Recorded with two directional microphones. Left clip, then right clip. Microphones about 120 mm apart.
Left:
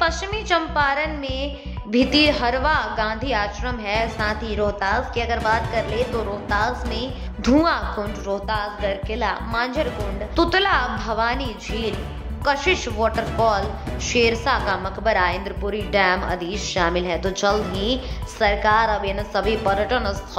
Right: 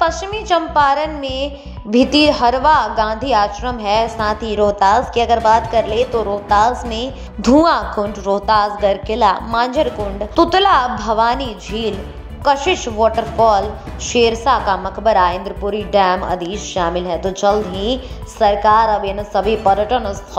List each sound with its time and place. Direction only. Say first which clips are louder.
0.0 s a woman's voice: right 5 dB; 15° right (ahead or behind); by 8.5 s 35° right (ahead or behind)
8.5 s a woman's voice: right 10 dB; 45° right (ahead or behind)
10.3 s a woman's voice: right 7 dB; 20° right (ahead or behind)
16.5 s a woman's voice: right 3 dB; centre (ahead or behind)
17.7 s a woman's voice: right 4 dB; 15° right (ahead or behind)